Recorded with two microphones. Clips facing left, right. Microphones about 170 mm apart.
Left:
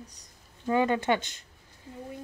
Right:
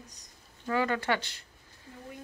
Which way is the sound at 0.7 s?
20° left (ahead or behind).